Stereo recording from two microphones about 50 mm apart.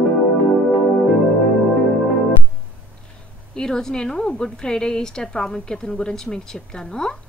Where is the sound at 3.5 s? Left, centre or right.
Centre.